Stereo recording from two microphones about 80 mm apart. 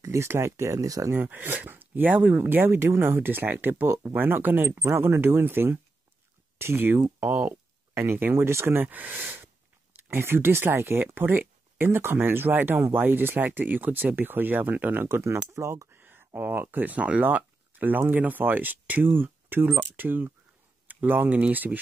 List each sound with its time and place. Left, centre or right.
0.0 s speech: right
1.1 s speech: right
8.8 s speech: centre; by 15.9 s right
15.9 s a sound: right
16.3 s speech: right